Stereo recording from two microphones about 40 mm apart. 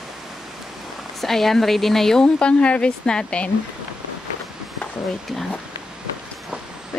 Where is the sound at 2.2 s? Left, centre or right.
Left.